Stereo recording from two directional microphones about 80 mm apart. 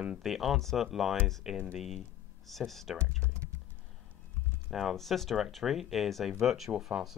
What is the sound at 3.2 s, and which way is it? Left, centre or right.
Typing, right.